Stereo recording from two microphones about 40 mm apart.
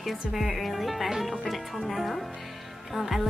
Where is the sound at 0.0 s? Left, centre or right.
Centre.